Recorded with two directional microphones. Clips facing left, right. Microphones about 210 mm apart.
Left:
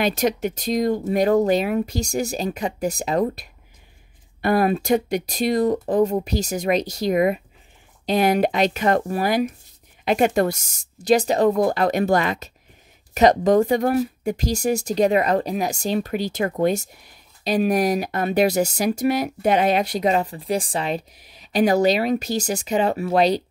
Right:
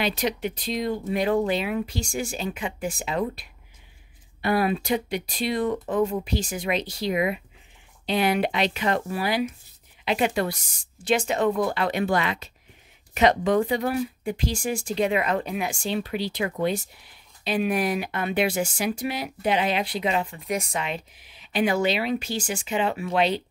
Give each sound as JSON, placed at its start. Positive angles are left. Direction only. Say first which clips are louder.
{"t": 0.0, "sound": "speech", "louder": "left 5 dB", "side_deg": 45}